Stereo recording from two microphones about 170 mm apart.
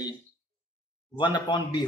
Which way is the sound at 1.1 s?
25° left (ahead or behind).